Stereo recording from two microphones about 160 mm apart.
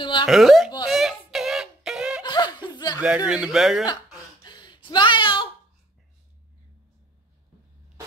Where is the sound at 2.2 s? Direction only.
25° left (ahead or behind).